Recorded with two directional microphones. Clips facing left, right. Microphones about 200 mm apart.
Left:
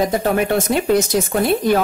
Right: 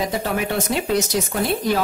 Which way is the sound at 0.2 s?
50° left (ahead or behind).